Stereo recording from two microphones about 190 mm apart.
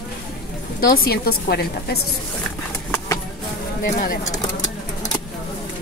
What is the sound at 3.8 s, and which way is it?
Speech, 50° left (ahead or behind).